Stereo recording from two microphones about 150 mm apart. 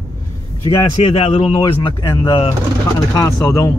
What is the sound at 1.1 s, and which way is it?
Speech, 45° left (ahead or behind).